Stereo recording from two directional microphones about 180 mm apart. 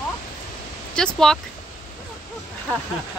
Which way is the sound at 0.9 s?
5° left (ahead or behind).